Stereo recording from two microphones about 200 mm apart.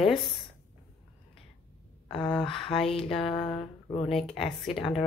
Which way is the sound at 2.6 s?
25° left (ahead or behind).